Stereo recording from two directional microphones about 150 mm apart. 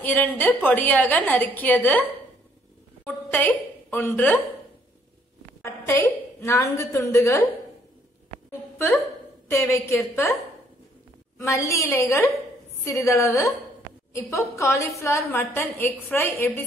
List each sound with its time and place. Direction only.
0.0 s a woman's voice: 10° left (ahead or behind)
3.3 s a woman's voice: 10° left (ahead or behind)
5.6 s a sound: 15° left (ahead or behind)
6.4 s a woman's voice: 20° left (ahead or behind)
9.5 s a woman's voice: 20° left (ahead or behind)
11.3 s a woman's voice: 20° left (ahead or behind)